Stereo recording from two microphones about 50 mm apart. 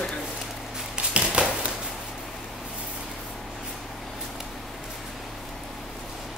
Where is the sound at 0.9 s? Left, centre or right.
Right.